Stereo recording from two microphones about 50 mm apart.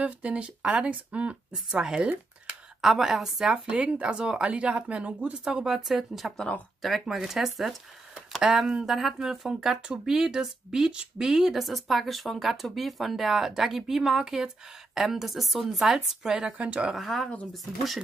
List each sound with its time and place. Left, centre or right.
0.0 s speech: right
1.5 s a woman's voice: centre
3.7 s speech: right
5.4 s a woman's voice: centre
5.9 s a woman's voice: centre
16.5 s speech: right
16.9 s a woman's voice: centre